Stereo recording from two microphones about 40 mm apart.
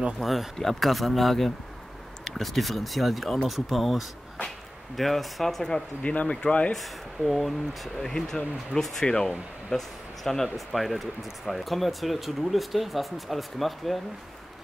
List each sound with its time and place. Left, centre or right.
0.2 s speech: centre
6.0 s speech: left
6.7 s speech: centre
9.0 s speech: left
9.7 s speech: centre